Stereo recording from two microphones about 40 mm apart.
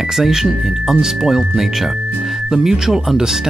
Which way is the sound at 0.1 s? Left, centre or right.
Centre.